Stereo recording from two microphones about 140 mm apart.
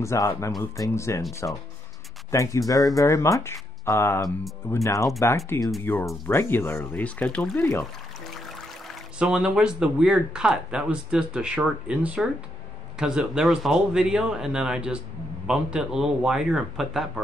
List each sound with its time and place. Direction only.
0.0 s speech: 20° left (ahead or behind)
9.2 s speech: 5° right (ahead or behind)